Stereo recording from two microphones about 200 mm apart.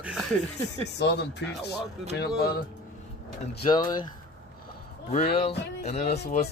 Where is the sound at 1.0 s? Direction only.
60° left (ahead or behind).